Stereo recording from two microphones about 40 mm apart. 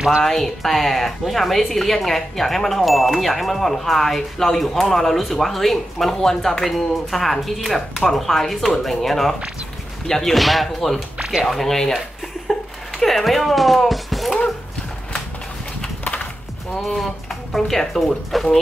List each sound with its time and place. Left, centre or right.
0.2 s a woman's voice: centre
10.3 s a woman's voice: centre
11.1 s a sound: centre
11.4 s speech: centre
13.0 s speech: centre
16.7 s speech: centre